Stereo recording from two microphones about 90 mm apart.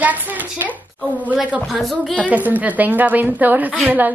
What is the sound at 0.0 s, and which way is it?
A woman's voice, 20° right (ahead or behind).